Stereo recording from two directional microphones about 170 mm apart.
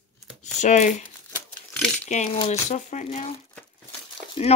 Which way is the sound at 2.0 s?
45° left (ahead or behind).